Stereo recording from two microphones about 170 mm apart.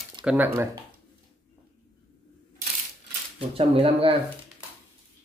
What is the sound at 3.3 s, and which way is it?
Speech, 35° right (ahead or behind).